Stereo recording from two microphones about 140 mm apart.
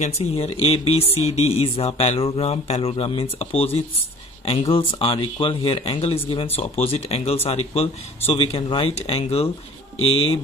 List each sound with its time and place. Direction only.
0.0 s speech: 45° left (ahead or behind)